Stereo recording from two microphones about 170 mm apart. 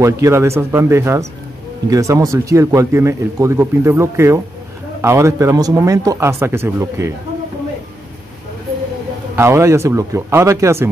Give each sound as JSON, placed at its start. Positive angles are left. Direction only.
{"t": 0.0, "sound": "speech", "side_deg": -15}
{"t": 9.3, "sound": "speech", "side_deg": -15}